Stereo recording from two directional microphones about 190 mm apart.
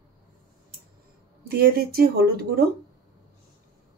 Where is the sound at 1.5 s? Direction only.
55° right (ahead or behind).